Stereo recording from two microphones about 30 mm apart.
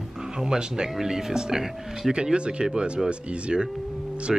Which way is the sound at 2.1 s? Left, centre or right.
Right.